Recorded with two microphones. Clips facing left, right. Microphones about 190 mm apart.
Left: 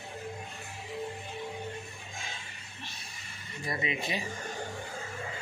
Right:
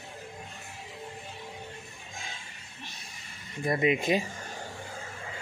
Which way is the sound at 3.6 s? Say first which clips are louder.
Right 8 dB; 50° right (ahead or behind).